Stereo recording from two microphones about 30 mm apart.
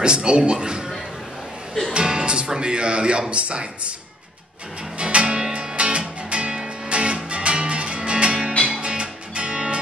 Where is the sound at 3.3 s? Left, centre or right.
Right.